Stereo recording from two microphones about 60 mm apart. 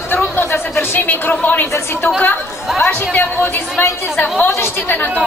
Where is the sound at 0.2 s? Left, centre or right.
Left.